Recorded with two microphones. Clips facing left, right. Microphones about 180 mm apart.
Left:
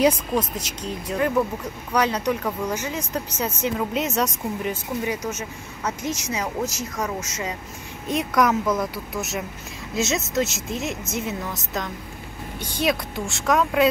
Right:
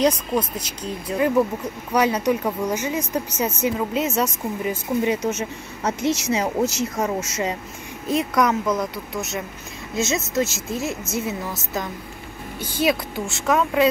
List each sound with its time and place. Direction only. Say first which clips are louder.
0.3 s a woman's voice: right 1 dB; centre (ahead or behind)
5.0 s speech: right 5 dB; 25° right (ahead or behind)
8.1 s a woman's voice: right 1 dB; centre (ahead or behind)